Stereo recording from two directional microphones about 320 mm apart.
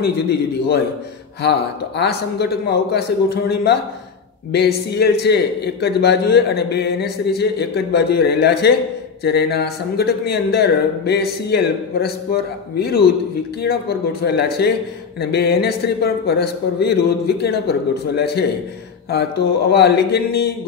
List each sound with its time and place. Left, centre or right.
0.0 s a man's voice: left
19.7 s a man's voice: left